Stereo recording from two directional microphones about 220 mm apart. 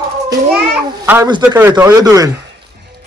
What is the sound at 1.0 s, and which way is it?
Speech, 10° right (ahead or behind).